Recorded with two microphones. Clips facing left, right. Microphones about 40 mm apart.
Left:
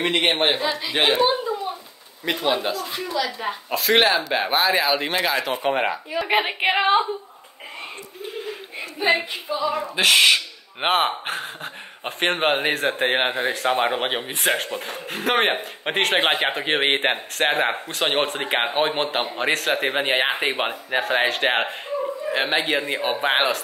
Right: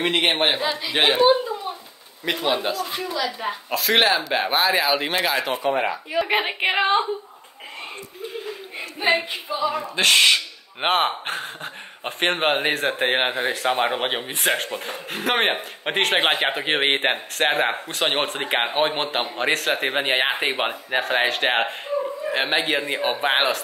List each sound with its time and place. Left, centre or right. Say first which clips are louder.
0.0 s a man's voice: even; centre
5.6 s speech: even; left
6.2 s a man's voice: left 3 dB; centre
9.7 s a man's voice: left 1 dB; centre